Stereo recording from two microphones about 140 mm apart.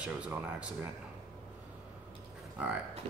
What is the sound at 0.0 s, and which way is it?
Speech, 10° right (ahead or behind).